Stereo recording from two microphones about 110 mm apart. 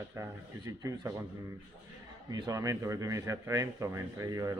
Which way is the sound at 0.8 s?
30° right (ahead or behind).